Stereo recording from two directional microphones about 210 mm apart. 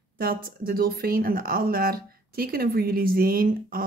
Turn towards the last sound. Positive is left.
turn(degrees=-45)  # may be behind; listen again after turning